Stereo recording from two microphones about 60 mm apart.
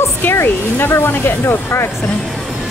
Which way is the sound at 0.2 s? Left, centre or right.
Left.